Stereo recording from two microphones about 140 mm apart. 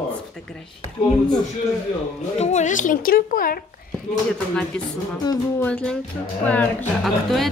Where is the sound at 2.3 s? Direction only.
55° left (ahead or behind); by 3.6 s 90° left.